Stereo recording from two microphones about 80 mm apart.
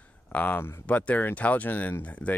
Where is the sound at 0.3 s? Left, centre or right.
Centre.